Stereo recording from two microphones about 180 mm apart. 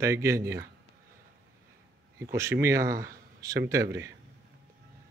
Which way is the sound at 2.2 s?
15° right (ahead or behind).